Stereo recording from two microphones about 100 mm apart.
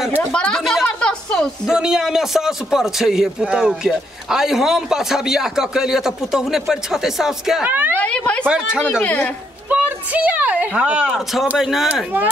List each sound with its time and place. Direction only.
0.2 s a sound: 10° left (ahead or behind)
1.7 s a man's voice: 5° right (ahead or behind)
7.6 s speech: 20° right (ahead or behind)
8.0 s speech: 15° left (ahead or behind)
9.7 s a woman's voice: 15° right (ahead or behind)
11.9 s speech: 20° right (ahead or behind)